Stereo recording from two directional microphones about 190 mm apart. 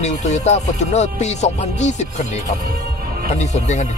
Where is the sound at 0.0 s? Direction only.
35° left (ahead or behind).